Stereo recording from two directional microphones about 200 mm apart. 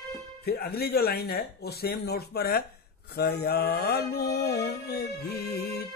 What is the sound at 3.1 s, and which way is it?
Music, 50° left (ahead or behind).